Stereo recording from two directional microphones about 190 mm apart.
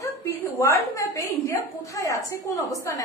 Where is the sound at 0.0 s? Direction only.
15° left (ahead or behind).